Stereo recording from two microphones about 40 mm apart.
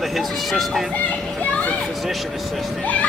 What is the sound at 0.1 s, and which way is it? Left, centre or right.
Speech, centre.